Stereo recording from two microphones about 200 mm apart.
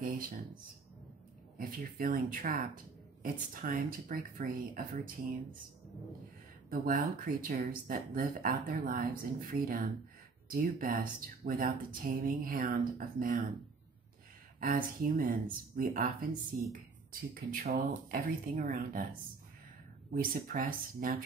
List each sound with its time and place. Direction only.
1.6 s speech: 45° right (ahead or behind)
6.7 s speech: 45° right (ahead or behind)
14.6 s speech: 45° right (ahead or behind)
20.1 s speech: 45° right (ahead or behind)